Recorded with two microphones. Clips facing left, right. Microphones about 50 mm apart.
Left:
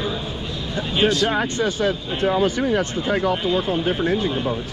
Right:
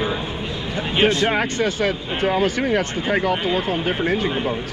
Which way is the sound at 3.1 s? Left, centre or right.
Right.